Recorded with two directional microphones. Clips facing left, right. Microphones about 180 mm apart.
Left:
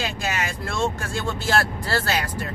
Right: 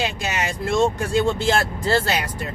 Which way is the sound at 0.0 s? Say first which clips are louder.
Right 2 dB; 20° right (ahead or behind).